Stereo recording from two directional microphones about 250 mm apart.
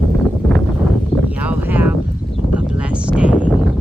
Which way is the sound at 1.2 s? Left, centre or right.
Centre.